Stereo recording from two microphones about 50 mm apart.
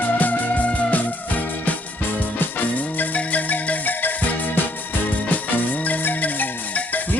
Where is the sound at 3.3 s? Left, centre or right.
Left.